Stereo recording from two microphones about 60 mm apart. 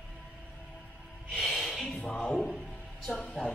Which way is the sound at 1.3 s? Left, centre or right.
Centre.